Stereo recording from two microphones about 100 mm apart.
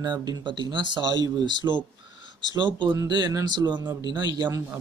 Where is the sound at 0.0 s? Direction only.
45° right (ahead or behind).